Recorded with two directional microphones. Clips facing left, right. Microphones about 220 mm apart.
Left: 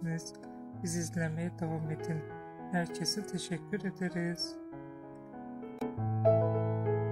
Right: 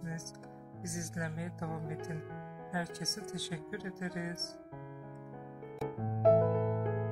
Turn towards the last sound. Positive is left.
turn(degrees=0)  # may be behind; listen again after turning